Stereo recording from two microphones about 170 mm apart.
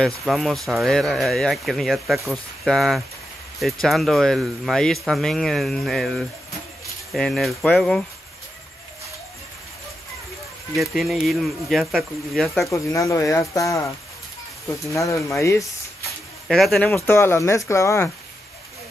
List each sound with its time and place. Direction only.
0.2 s speech: centre (ahead or behind)
10.8 s speech: centre (ahead or behind)
12.6 s speech: 20° left (ahead or behind)
16.4 s speech: centre (ahead or behind)
16.9 s speech: 15° left (ahead or behind)